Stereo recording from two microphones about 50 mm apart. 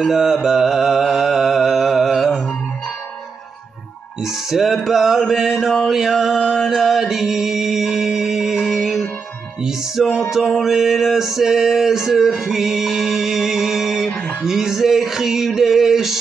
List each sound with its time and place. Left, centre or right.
0.0 s mantra: centre
4.2 s music: centre